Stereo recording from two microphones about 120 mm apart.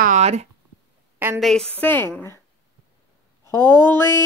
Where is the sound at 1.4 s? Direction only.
Centre (ahead or behind).